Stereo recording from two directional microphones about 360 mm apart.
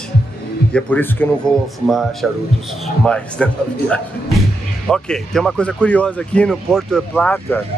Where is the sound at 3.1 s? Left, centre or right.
Centre.